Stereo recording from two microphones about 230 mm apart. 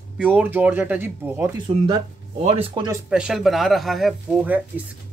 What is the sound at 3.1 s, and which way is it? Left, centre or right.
Speech, centre.